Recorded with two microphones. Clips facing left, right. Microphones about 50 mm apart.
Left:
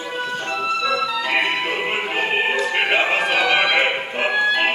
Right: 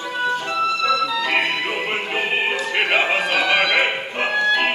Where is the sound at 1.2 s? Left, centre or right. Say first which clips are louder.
Even; centre.